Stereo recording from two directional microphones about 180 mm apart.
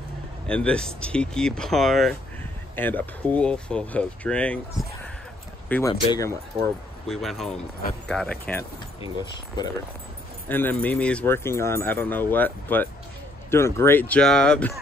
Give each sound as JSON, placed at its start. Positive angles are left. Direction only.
{"t": 0.5, "sound": "speech", "side_deg": 5}
{"t": 6.5, "sound": "speech", "side_deg": -30}
{"t": 7.1, "sound": "speech", "side_deg": 0}
{"t": 10.5, "sound": "speech", "side_deg": 10}